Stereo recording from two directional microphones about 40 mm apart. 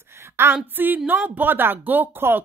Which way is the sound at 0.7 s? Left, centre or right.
Right.